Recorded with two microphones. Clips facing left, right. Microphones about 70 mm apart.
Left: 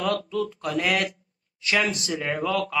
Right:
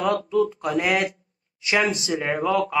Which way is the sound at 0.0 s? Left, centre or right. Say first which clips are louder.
Right 5 dB; centre.